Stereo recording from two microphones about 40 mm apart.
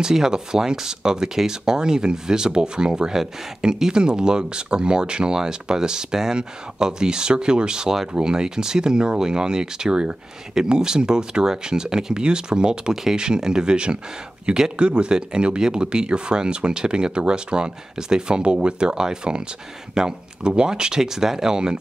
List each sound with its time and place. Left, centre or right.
0.0 s speech: centre
18.4 s speech: right